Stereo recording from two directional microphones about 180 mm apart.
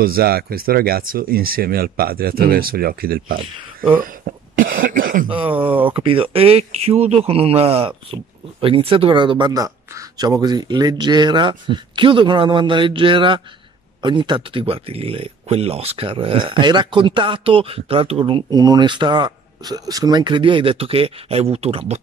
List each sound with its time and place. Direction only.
0.0 s speech: 55° right (ahead or behind)
5.3 s speech: 30° right (ahead or behind)
5.6 s speech: 10° right (ahead or behind)
5.9 s speech: 30° right (ahead or behind)